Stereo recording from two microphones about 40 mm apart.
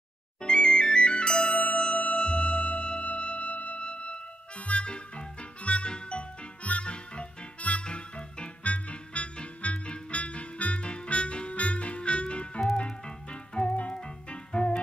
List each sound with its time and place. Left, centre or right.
0.4 s music: left